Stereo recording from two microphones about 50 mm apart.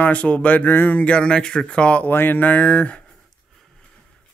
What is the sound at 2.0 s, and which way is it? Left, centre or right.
Speech, left.